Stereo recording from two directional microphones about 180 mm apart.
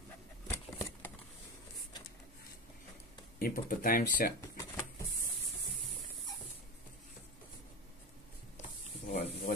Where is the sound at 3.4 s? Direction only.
50° left (ahead or behind).